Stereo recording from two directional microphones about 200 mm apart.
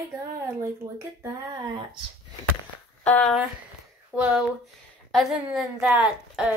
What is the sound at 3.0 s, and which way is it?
Speech, 10° left (ahead or behind).